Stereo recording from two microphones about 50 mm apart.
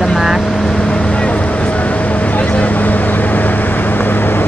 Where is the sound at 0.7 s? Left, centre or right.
Centre.